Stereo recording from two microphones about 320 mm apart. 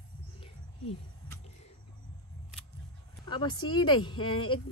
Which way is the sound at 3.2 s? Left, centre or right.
Centre.